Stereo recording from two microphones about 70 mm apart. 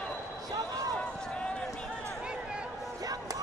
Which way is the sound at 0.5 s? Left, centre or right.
Right.